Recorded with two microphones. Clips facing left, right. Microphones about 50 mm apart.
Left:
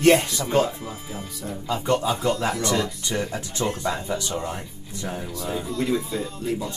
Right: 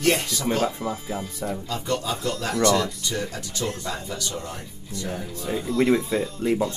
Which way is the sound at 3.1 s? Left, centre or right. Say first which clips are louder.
Left 2 dB; left.